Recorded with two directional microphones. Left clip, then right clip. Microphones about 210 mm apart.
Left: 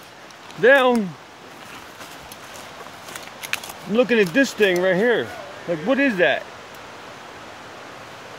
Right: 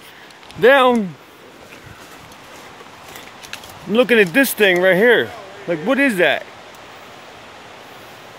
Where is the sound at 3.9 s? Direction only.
30° right (ahead or behind).